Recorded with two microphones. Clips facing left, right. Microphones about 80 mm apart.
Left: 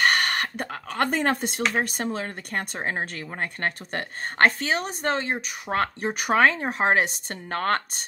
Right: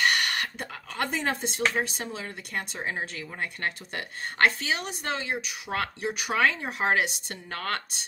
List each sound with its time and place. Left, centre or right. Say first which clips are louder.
0.0 s speech: left 3 dB; left